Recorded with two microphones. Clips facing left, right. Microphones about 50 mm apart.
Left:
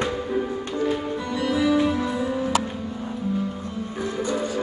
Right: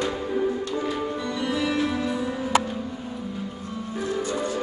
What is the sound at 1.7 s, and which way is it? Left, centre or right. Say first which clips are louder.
Music: left 3 dB; left.